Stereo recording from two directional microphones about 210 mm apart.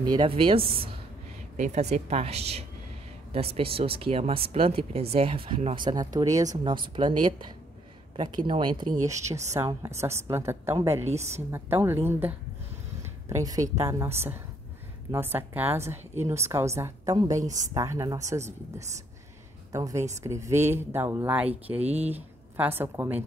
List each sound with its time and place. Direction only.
0.0 s a woman's voice: 20° right (ahead or behind)
13.0 s a sound: 15° right (ahead or behind)
13.7 s a woman's voice: 15° right (ahead or behind)
21.8 s a woman's voice: 30° right (ahead or behind)
22.1 s speech: 10° right (ahead or behind)